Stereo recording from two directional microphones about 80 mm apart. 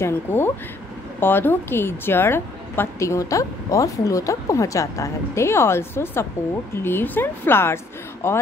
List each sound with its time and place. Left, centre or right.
0.0 s a woman's voice: left